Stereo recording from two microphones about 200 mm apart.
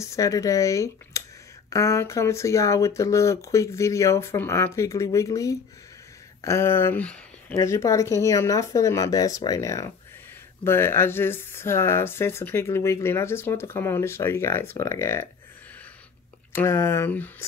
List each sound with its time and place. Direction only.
0.0 s speech: 15° left (ahead or behind)
16.5 s speech: 10° left (ahead or behind)